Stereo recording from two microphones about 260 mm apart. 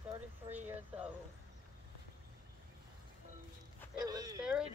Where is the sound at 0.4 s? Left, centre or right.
Centre.